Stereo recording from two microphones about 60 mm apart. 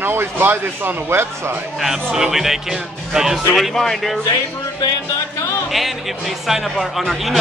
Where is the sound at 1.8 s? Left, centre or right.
Centre.